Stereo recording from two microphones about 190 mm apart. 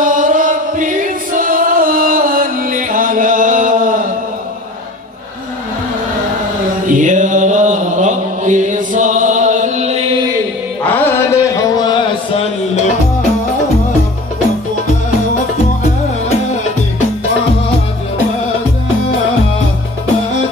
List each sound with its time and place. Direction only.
0.0 s music: 45° right (ahead or behind)
6.9 s chant: 40° right (ahead or behind)
10.9 s a sound: 10° left (ahead or behind)